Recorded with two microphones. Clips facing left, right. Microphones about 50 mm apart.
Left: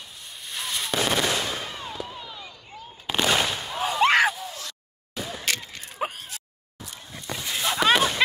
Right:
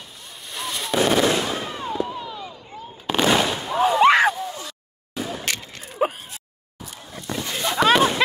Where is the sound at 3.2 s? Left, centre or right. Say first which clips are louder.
Right 4 dB; right.